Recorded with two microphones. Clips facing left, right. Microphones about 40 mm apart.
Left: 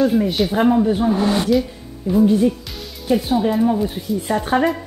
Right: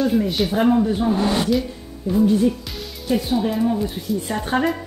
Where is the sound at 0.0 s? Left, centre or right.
Centre.